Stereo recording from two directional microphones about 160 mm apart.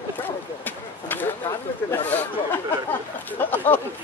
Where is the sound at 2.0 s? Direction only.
10° left (ahead or behind).